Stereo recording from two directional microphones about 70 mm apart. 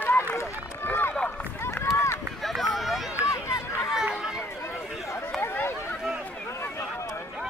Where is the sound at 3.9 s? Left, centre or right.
Centre.